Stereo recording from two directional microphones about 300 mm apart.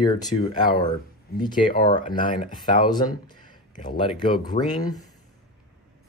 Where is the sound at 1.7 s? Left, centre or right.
Centre.